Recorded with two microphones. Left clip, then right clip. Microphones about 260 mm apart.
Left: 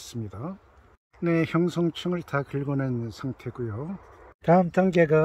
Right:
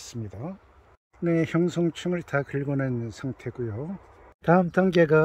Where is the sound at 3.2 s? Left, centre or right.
Left.